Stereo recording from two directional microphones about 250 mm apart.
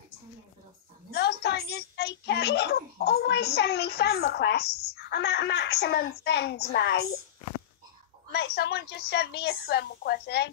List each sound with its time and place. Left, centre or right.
1.1 s a child's voice: left
8.3 s a woman's voice: left